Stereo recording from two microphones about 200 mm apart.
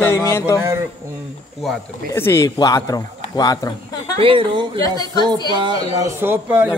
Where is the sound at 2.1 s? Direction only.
10° left (ahead or behind).